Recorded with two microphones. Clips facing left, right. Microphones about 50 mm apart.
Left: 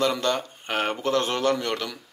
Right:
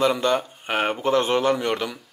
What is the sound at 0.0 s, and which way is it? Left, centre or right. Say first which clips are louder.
Speech: right 3 dB; centre.